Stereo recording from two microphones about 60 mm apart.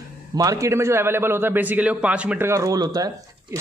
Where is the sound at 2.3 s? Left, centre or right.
Right.